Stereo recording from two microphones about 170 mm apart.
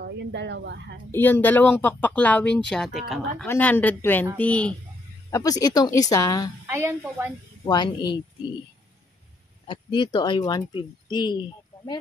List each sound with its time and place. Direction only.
0.0 s speech: 90° right
1.1 s speech: 10° left (ahead or behind)
3.4 s speech: 10° left (ahead or behind)
5.3 s speech: 20° left (ahead or behind)
6.7 s a woman's voice: 15° right (ahead or behind)
7.6 s speech: 25° left (ahead or behind)
9.7 s speech: 30° left (ahead or behind)